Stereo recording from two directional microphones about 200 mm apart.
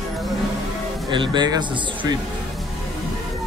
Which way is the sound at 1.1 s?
25° right (ahead or behind).